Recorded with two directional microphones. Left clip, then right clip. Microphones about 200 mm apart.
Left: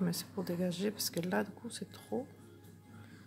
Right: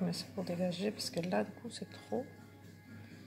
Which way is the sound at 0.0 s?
35° left (ahead or behind).